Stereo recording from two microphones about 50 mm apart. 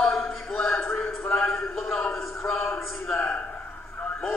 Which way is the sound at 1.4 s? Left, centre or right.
Centre.